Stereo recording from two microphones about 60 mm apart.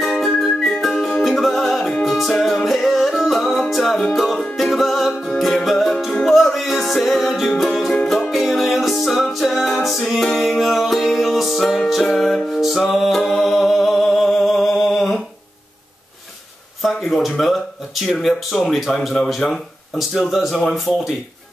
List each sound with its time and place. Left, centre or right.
0.0 s music: centre
3.7 s speech: centre
4.6 s music: centre
5.1 s music: centre
5.4 s music: centre
8.3 s music: centre
16.8 s speech: centre